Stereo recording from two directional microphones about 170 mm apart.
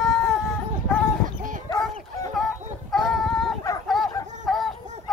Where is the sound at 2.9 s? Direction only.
Centre (ahead or behind).